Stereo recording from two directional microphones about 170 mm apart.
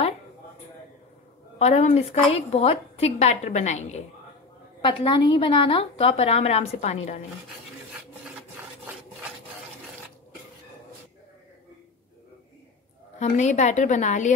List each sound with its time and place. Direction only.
1.6 s a woman's voice: 45° left (ahead or behind)
4.8 s a woman's voice: 30° left (ahead or behind)
13.2 s a woman's voice: 45° left (ahead or behind)